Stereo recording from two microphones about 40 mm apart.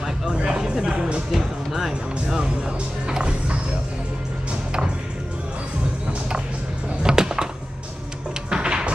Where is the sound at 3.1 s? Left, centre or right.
Right.